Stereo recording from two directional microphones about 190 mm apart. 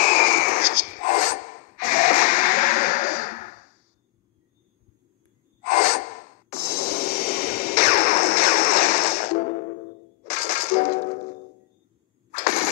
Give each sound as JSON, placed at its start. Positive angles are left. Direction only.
{"t": 0.0, "sound": "rub", "side_deg": 50}
{"t": 5.6, "sound": "gasp", "side_deg": 50}
{"t": 10.2, "sound": "music", "side_deg": 50}
{"t": 12.3, "sound": "engine starting", "side_deg": 45}